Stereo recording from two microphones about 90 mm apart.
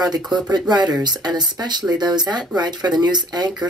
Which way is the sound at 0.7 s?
50° right (ahead or behind).